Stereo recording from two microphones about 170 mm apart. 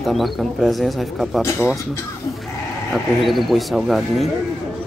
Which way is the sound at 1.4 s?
15° left (ahead or behind).